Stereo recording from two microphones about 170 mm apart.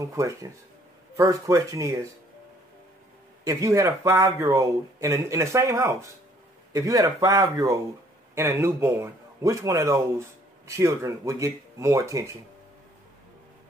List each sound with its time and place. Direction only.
0.0 s speech: 20° right (ahead or behind)
3.4 s speech: 20° right (ahead or behind)